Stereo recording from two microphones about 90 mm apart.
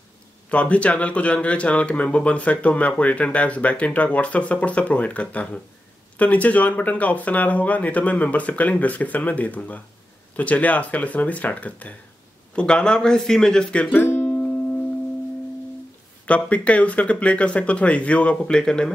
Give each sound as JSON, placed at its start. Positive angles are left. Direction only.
{"t": 0.5, "sound": "speech", "side_deg": 15}
{"t": 14.0, "sound": "music", "side_deg": 25}
{"t": 16.3, "sound": "speech", "side_deg": 15}